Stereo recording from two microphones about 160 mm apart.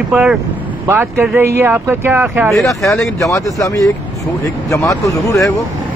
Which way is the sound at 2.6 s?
20° left (ahead or behind).